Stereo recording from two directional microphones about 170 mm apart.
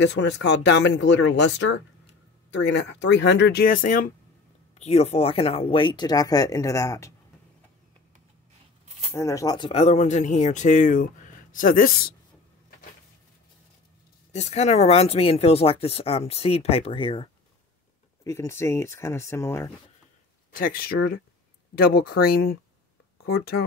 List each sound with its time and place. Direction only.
0.0 s speech: 90° left; by 4.1 s 50° left (ahead or behind)
4.7 s speech: 40° left (ahead or behind); by 7.2 s 20° left (ahead or behind)
9.1 s speech: 15° left (ahead or behind)
9.7 s speech: 40° left (ahead or behind); by 12.0 s 55° left (ahead or behind)
14.3 s speech: 40° left (ahead or behind)
18.2 s speech: 15° left (ahead or behind)
20.5 s speech: 60° left (ahead or behind)